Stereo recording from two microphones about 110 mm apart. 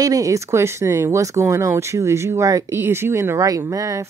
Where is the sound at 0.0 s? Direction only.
30° right (ahead or behind).